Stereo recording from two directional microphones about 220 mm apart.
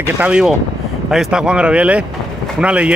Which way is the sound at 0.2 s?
5° right (ahead or behind).